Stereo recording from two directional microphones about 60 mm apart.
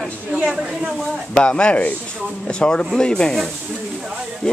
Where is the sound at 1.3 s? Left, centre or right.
Centre.